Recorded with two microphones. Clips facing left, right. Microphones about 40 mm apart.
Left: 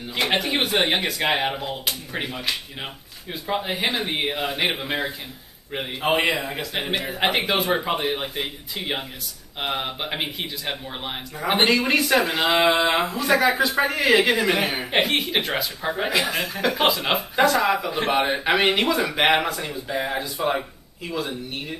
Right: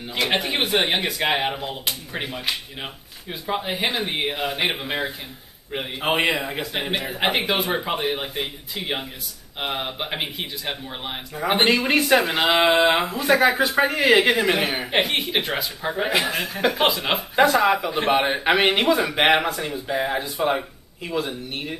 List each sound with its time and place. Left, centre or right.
0.3 s speech: centre
11.9 s speech: centre
13.4 s speech: right
14.4 s speech: centre
17.4 s speech: centre